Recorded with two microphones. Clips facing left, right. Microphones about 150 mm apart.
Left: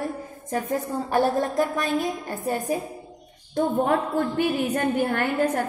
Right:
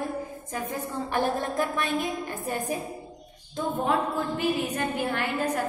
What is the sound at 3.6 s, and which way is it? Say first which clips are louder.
A woman's voice: left 4 dB; 60° left (ahead or behind).